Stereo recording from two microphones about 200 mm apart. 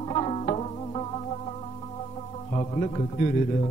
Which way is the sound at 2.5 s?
30° left (ahead or behind).